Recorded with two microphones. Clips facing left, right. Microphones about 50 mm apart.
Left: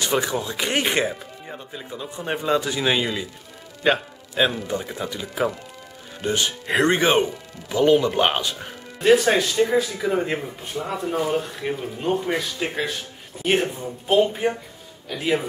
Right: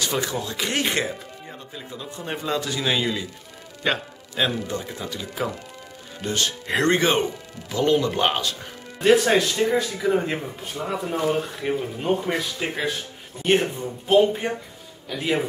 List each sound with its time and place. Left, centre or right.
0.0 s speech: left
9.0 s speech: centre